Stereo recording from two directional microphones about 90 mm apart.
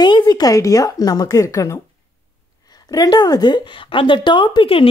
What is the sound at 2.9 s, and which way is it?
A woman's voice, 45° left (ahead or behind).